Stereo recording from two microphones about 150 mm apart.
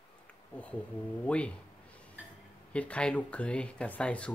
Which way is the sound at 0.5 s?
10° left (ahead or behind).